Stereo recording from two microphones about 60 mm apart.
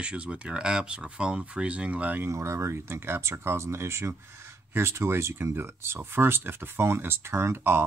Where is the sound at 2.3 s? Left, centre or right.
Right.